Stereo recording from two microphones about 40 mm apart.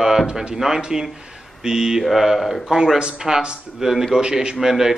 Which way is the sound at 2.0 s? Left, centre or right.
Centre.